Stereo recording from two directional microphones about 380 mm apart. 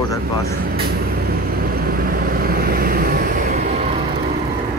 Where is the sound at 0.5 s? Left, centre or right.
Right.